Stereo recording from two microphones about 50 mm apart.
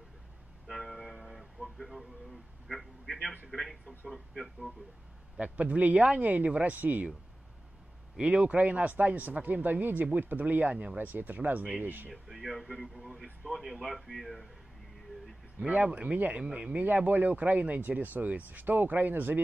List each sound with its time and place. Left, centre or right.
0.7 s music: centre
2.7 s a man's voice: centre
5.4 s speech: right
8.2 s speech: right
12.1 s speech: centre
15.6 s speech: right
16.8 s speech: right